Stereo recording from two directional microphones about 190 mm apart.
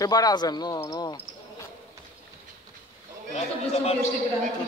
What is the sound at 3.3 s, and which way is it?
Speech, 35° left (ahead or behind).